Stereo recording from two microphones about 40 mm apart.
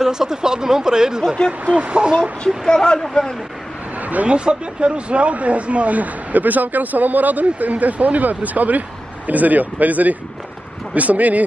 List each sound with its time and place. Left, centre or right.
0.0 s speech: centre
1.7 s speech: right
2.6 s speech: centre
4.0 s a sound: right
4.3 s speech: right